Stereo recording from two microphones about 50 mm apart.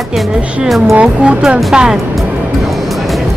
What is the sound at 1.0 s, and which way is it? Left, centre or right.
Speech, centre.